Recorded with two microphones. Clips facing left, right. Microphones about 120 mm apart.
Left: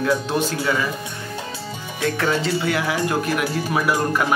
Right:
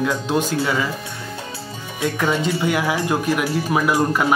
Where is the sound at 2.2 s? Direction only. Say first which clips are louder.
Right 2 dB; 15° right (ahead or behind).